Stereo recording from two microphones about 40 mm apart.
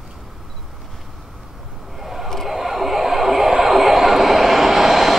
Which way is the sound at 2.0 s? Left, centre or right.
Centre.